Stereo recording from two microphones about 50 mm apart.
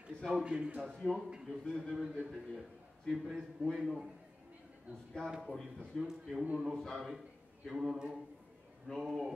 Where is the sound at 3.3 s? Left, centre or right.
Centre.